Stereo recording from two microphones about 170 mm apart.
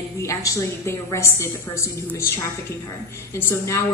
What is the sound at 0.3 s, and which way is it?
A woman's voice, 20° left (ahead or behind).